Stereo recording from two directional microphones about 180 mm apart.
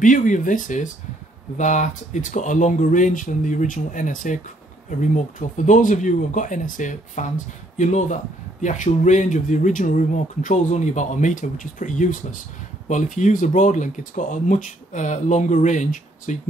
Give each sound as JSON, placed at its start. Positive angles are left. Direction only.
{"t": 0.0, "sound": "speech", "side_deg": 45}